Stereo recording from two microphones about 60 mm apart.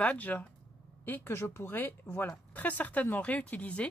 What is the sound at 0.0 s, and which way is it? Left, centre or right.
A woman's voice, left.